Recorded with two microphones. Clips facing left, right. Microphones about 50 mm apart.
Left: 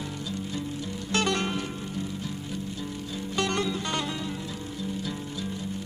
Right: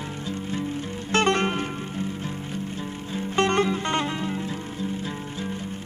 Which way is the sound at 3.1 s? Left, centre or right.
Right.